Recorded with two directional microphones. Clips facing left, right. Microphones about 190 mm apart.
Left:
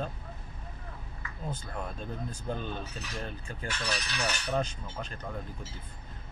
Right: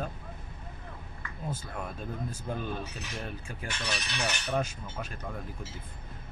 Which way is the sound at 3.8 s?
20° right (ahead or behind).